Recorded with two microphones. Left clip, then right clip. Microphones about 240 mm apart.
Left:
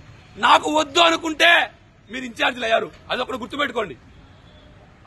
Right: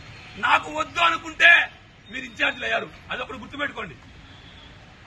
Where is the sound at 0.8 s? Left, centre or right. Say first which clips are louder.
Left 5 dB; left.